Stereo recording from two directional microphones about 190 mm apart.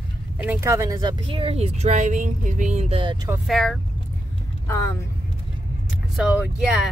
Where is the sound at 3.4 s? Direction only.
Centre (ahead or behind).